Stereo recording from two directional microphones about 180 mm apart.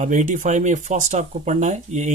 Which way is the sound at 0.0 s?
45° right (ahead or behind).